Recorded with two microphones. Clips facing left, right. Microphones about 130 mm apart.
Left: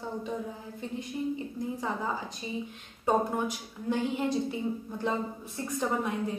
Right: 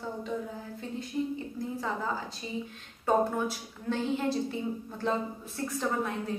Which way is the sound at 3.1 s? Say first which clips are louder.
Right 1 dB; 15° left (ahead or behind).